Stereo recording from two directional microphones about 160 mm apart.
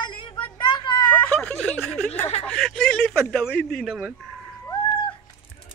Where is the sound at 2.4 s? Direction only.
5° left (ahead or behind).